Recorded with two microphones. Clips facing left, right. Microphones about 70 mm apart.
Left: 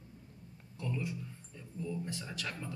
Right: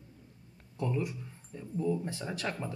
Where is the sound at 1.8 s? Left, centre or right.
Right.